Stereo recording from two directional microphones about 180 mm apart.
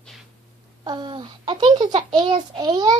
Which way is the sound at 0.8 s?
25° right (ahead or behind).